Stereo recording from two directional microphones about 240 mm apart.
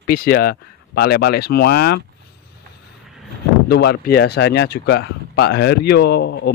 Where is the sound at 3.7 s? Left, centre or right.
Left.